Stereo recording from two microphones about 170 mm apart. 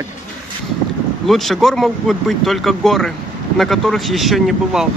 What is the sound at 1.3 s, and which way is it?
Speech, centre (ahead or behind).